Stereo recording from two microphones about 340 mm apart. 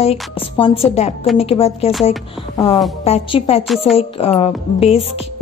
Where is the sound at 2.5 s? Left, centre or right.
Centre.